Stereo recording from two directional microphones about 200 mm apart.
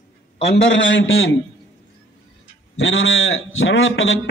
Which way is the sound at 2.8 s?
65° left (ahead or behind).